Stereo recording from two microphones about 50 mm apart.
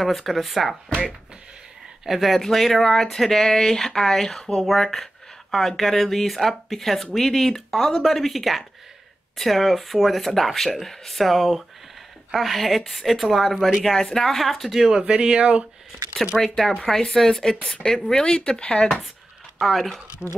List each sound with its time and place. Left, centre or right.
0.0 s speech: centre
2.0 s speech: centre
15.0 s speech: right
16.3 s speech: centre
19.6 s speech: centre